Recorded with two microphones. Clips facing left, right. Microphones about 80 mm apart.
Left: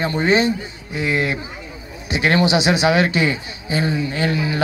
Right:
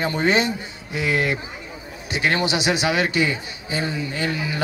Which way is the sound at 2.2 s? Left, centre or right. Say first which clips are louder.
Left 5 dB; left.